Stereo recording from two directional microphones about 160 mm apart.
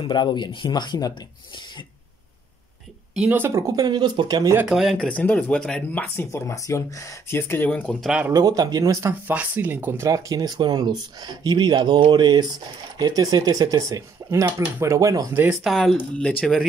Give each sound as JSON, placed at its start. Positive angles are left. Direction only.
{"t": 0.0, "sound": "speech", "side_deg": 30}
{"t": 3.2, "sound": "speech", "side_deg": -10}
{"t": 4.6, "sound": "speech", "side_deg": 0}
{"t": 5.0, "sound": "speech", "side_deg": 10}
{"t": 8.3, "sound": "speech", "side_deg": -25}
{"t": 9.3, "sound": "speech", "side_deg": -10}
{"t": 15.6, "sound": "speech", "side_deg": 0}